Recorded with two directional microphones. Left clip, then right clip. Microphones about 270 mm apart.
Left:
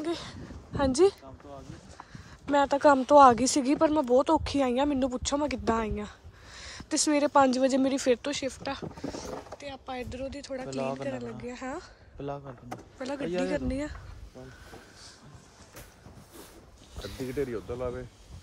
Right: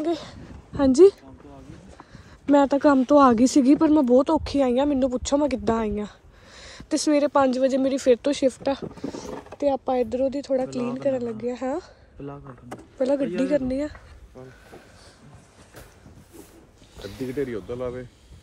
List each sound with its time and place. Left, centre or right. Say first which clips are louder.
0.0 s speech: right 7 dB; centre
2.5 s speech: right 4 dB; centre
13.0 s speech: right 9 dB; centre
16.9 s a sound: right 4 dB; centre
17.4 s speech: right 4 dB; right